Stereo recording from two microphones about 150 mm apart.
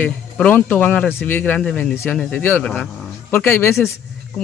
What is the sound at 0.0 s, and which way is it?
Speech, 10° left (ahead or behind).